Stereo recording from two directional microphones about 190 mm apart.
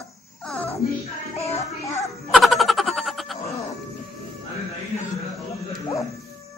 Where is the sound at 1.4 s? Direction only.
30° left (ahead or behind).